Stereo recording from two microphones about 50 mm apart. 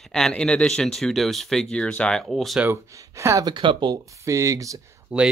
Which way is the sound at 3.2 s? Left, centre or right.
Right.